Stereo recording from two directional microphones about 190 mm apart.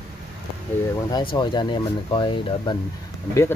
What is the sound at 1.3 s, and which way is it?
Speech, 25° left (ahead or behind).